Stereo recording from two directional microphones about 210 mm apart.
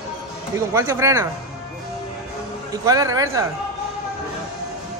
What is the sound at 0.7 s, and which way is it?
Speech, 15° right (ahead or behind).